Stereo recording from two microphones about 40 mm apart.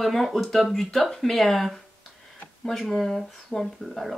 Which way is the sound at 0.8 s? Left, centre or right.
Centre.